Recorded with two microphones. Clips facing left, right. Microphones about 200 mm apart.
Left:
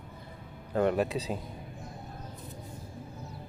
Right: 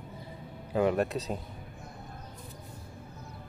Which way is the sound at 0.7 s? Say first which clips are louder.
Even; centre (ahead or behind).